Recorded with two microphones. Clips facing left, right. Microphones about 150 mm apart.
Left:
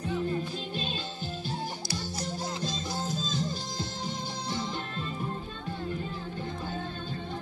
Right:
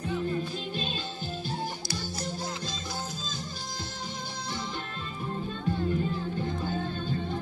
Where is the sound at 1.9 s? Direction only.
25° left (ahead or behind).